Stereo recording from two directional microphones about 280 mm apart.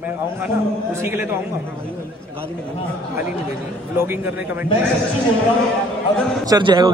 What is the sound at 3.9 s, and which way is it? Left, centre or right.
Speech, centre.